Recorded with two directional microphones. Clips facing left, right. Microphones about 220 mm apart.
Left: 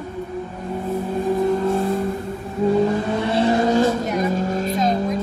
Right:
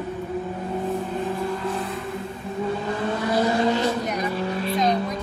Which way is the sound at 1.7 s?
45° left (ahead or behind).